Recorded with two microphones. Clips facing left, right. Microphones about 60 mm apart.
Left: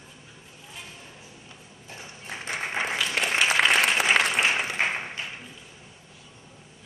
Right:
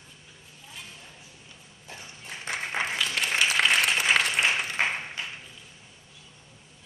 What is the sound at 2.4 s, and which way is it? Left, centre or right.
Applause, centre.